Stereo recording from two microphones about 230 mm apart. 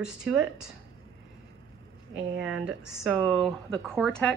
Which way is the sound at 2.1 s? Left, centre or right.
Centre.